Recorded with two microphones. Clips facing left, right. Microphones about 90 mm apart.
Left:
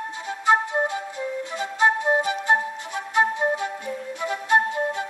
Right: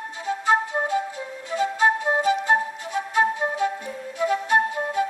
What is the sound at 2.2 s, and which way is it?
Flute, 20° left (ahead or behind).